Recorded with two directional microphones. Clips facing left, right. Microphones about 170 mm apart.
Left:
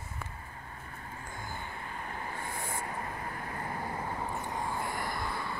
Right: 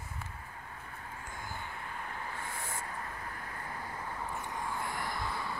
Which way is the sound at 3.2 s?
50° left (ahead or behind).